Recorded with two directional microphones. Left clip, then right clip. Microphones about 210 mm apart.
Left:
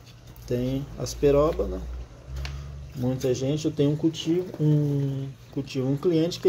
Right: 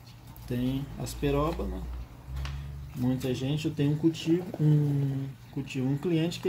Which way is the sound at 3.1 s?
20° left (ahead or behind).